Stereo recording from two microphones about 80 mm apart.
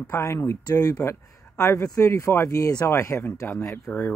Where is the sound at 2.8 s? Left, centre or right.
Left.